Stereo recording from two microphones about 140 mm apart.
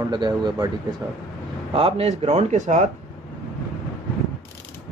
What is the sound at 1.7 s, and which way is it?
A man's voice, 40° right (ahead or behind).